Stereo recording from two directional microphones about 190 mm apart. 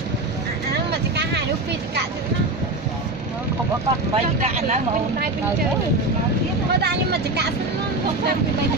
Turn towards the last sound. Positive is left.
turn(degrees=-60)  # may be behind; listen again after turning